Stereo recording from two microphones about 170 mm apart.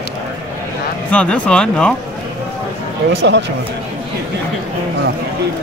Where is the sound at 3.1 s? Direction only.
85° right.